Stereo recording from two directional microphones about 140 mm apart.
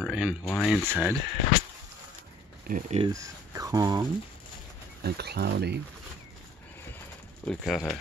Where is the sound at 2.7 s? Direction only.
90° right.